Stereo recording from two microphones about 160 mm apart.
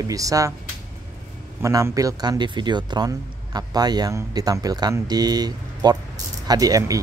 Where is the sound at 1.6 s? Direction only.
20° right (ahead or behind).